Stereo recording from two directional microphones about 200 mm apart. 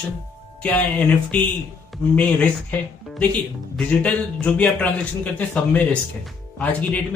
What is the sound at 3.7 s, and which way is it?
A man's voice, 5° left (ahead or behind).